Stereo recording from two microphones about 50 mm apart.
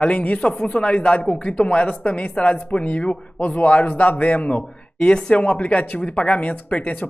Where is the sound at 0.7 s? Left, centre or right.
Left.